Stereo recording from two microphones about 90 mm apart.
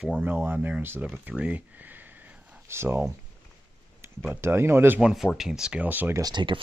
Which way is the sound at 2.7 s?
30° right (ahead or behind).